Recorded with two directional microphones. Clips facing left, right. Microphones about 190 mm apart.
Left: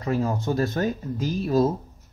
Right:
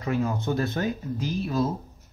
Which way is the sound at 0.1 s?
40° left (ahead or behind).